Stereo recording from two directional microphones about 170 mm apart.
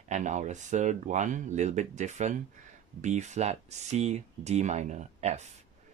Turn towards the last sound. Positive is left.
turn(degrees=-40)  # may be behind; listen again after turning